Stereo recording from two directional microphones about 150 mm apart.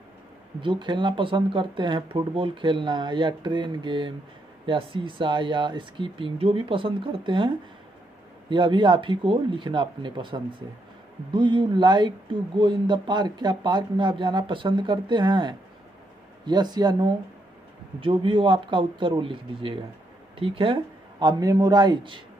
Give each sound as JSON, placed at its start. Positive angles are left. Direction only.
{"t": 0.6, "sound": "speech", "side_deg": -30}